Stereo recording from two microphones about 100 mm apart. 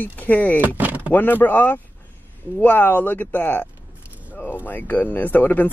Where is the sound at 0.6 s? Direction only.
15° right (ahead or behind).